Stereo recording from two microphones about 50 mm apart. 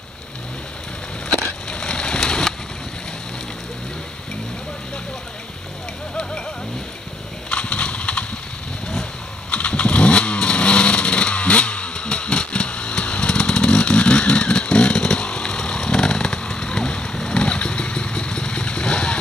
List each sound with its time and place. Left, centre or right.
1.3 s a sound: centre
7.4 s horse: left
9.5 s motorcycle: left